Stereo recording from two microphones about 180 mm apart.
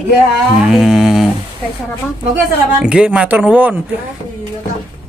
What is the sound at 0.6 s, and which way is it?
Speech, 5° right (ahead or behind).